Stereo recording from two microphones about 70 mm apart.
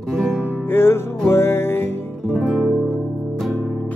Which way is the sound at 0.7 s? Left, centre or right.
Left.